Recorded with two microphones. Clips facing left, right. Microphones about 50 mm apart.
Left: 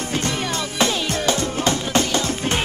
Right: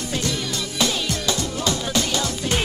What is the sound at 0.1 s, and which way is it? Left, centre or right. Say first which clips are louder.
Music: left 2 dB; left.